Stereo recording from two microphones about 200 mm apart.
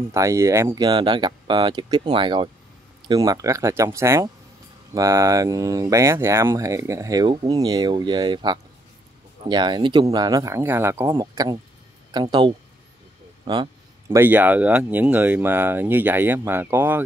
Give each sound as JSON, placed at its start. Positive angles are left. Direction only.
{"t": 0.1, "sound": "speech", "side_deg": -15}